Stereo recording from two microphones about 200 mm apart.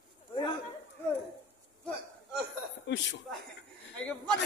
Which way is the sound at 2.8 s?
60° left (ahead or behind).